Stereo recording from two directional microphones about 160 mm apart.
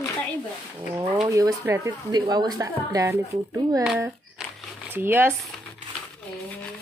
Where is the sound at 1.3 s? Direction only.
20° right (ahead or behind).